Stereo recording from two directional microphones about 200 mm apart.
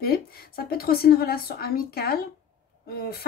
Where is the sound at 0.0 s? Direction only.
50° left (ahead or behind).